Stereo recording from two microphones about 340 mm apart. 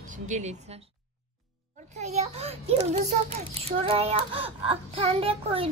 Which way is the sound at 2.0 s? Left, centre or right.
Centre.